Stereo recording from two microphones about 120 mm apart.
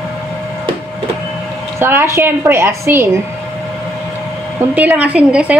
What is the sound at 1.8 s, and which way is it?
A woman's voice, 20° right (ahead or behind).